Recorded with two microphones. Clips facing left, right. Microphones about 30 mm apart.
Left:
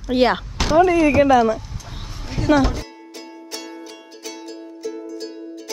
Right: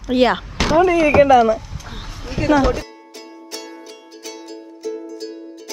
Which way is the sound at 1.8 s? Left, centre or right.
Right.